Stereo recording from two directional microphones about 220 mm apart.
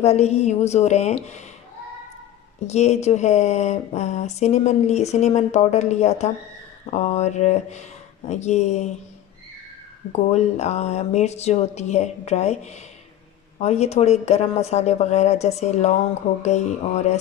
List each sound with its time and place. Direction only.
0.0 s speech: 30° left (ahead or behind)
2.6 s speech: 30° left (ahead or behind)
10.3 s speech: 30° left (ahead or behind)